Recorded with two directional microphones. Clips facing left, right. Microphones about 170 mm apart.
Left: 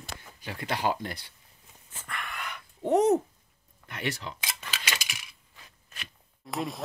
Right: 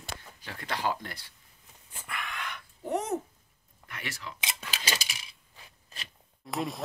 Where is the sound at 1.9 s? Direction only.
5° right (ahead or behind).